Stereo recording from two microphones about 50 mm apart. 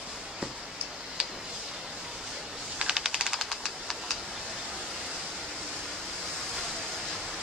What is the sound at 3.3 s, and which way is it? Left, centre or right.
Typing, centre.